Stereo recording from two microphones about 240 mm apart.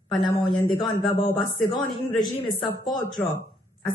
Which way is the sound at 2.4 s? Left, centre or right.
Left.